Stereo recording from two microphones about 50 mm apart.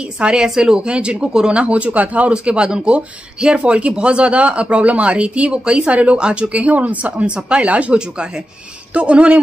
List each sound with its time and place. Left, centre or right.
0.2 s speech: centre